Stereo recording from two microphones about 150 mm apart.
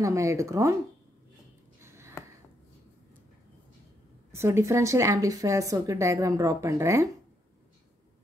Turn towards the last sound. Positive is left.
turn(degrees=-20)  # may be behind; listen again after turning